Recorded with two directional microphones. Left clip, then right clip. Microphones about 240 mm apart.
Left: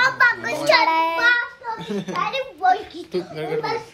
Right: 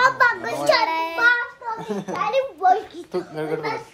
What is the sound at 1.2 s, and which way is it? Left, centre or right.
Speech, right.